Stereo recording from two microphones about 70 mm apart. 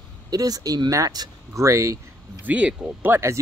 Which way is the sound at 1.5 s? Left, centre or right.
Right.